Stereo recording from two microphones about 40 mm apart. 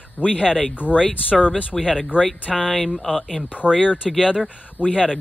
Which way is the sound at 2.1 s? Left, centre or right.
Left.